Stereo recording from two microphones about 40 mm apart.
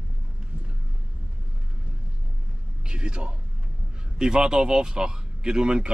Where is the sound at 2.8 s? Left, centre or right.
Right.